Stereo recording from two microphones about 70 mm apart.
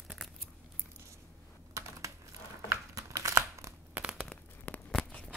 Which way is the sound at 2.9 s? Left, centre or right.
Right.